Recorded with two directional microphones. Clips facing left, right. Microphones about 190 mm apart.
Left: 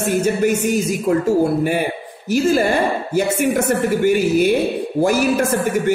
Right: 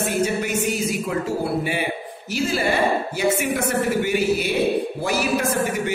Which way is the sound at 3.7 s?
45° left (ahead or behind).